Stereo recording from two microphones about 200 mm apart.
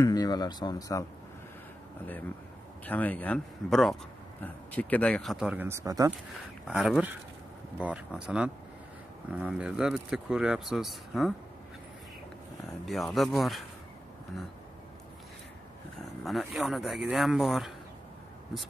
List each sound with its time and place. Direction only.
0.0 s speech: 20° left (ahead or behind)
2.8 s speech: 10° left (ahead or behind); by 6.1 s 15° right (ahead or behind)
6.7 s speech: 5° right (ahead or behind)
12.6 s speech: centre (ahead or behind)
16.3 s speech: centre (ahead or behind)